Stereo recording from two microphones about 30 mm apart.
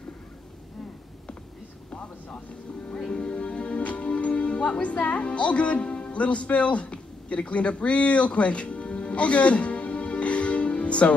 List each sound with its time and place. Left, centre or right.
3.1 s music: left
4.9 s speech: left
5.8 s music: left